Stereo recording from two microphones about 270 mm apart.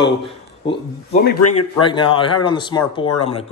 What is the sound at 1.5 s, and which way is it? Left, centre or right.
A man's voice, centre.